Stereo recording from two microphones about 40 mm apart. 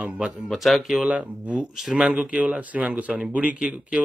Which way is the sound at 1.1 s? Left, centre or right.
Right.